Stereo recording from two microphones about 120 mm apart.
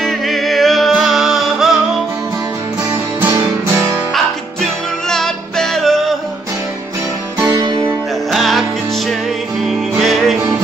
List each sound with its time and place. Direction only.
0.0 s music: centre (ahead or behind)
5.1 s music: 5° left (ahead or behind)
7.4 s music: 35° right (ahead or behind)
8.3 s music: centre (ahead or behind)
9.7 s music: centre (ahead or behind)